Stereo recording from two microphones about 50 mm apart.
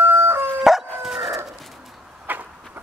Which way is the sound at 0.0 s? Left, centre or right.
Right.